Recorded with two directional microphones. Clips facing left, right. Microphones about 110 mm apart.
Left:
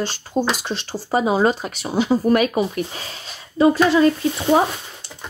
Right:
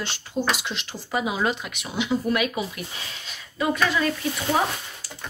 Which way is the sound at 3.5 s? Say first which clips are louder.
Left 9 dB; 30° left (ahead or behind).